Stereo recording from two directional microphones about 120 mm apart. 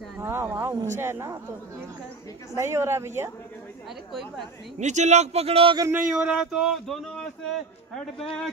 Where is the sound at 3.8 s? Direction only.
Centre (ahead or behind).